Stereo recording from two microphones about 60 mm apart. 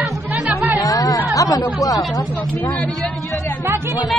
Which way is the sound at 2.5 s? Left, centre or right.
Left.